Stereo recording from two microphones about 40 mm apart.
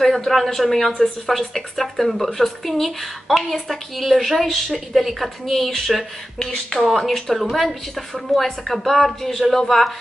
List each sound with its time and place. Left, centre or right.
0.0 s a woman's voice: centre
6.8 s a woman's voice: centre